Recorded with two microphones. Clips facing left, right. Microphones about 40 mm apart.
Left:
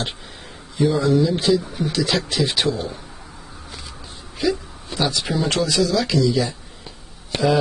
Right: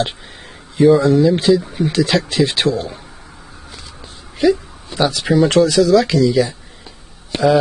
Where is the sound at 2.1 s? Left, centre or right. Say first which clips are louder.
Right 5 dB; right.